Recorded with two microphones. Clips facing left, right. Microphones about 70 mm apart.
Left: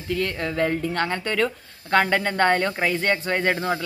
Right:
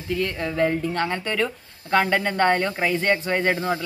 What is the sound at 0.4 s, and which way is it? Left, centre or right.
Speech, centre.